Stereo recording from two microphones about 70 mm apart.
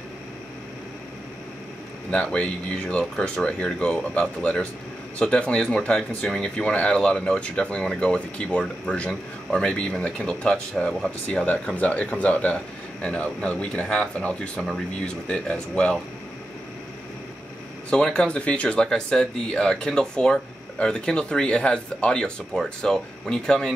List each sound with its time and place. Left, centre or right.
2.0 s speech: centre
17.8 s speech: centre